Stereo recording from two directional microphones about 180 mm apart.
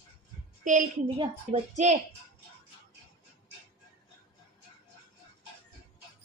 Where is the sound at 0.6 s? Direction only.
45° right (ahead or behind).